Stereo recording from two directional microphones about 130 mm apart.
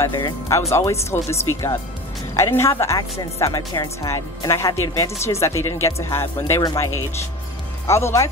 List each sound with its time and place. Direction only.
0.5 s speech: 20° left (ahead or behind)